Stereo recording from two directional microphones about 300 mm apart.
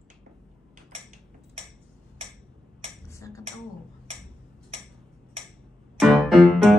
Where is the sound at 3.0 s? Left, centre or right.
Centre.